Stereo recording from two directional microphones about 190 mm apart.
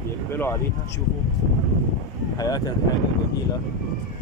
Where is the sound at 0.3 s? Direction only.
10° left (ahead or behind).